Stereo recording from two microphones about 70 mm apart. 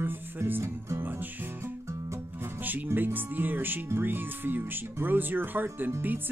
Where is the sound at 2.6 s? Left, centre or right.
Right.